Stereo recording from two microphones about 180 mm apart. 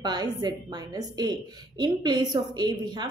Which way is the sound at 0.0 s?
25° right (ahead or behind).